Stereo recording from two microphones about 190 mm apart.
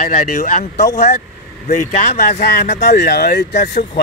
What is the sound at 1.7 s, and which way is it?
Speech, 40° left (ahead or behind).